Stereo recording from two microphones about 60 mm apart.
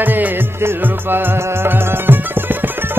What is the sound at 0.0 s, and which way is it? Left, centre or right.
Music, right.